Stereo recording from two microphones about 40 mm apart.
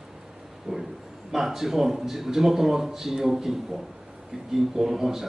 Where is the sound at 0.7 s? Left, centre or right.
Right.